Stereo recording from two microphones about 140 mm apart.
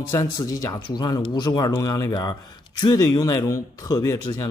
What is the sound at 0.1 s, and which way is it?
Speech, 20° left (ahead or behind).